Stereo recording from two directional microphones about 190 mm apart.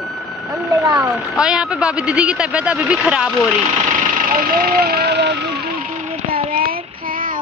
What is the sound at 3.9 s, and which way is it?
Vehicle, 45° right (ahead or behind).